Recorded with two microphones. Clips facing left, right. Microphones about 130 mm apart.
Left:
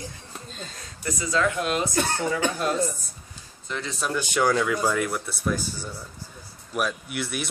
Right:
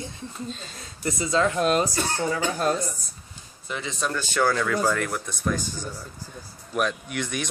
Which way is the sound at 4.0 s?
10° left (ahead or behind).